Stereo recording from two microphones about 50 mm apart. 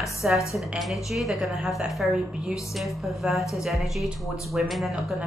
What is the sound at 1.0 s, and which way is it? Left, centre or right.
Speech, centre.